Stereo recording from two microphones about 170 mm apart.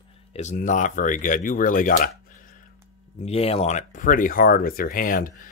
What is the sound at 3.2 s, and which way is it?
Speech, 35° left (ahead or behind).